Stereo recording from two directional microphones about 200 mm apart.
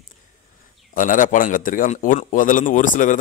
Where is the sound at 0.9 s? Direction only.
40° left (ahead or behind).